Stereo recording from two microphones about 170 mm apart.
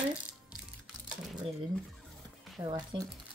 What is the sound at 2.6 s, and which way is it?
Speech, 25° right (ahead or behind).